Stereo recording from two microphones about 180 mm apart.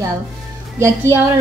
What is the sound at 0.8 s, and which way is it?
Speech, 15° right (ahead or behind).